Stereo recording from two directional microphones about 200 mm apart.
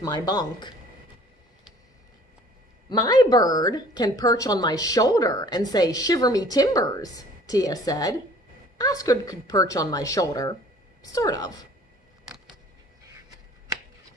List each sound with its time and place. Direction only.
0.0 s a woman's voice: 20° left (ahead or behind)
2.9 s a woman's voice: 20° left (ahead or behind)